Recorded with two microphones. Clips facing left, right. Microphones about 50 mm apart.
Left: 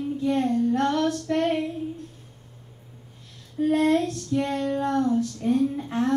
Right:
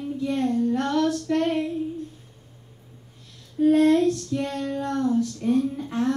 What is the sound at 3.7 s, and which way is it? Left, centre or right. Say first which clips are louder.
Child singing: right 3 dB; centre.